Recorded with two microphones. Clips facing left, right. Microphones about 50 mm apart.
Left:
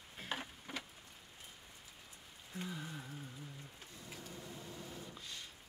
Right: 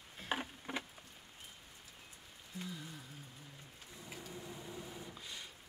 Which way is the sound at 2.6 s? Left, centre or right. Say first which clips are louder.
Left 2 dB; left.